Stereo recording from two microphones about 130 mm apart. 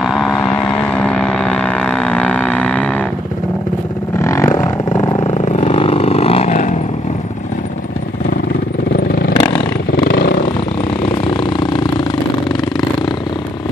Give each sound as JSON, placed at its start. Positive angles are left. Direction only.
{"t": 0.0, "sound": "vehicle", "side_deg": 0}
{"t": 4.2, "sound": "vehicle", "side_deg": 20}
{"t": 5.2, "sound": "vehicle", "side_deg": 60}
{"t": 5.8, "sound": "vehicle", "side_deg": 45}
{"t": 6.5, "sound": "vehicle", "side_deg": 70}
{"t": 9.3, "sound": "vehicle", "side_deg": 40}